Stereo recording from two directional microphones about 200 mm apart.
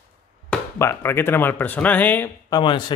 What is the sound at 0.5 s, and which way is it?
Speech, 10° left (ahead or behind).